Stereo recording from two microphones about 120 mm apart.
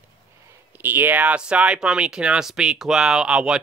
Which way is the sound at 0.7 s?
15° right (ahead or behind).